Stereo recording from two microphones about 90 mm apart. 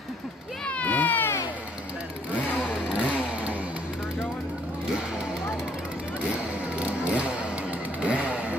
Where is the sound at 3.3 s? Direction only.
15° right (ahead or behind).